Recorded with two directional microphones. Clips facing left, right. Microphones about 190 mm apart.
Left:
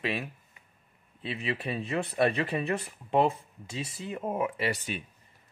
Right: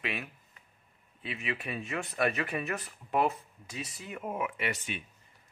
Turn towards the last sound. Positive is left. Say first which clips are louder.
# left 4 dB
turn(degrees=35)  # may be behind; listen again after turning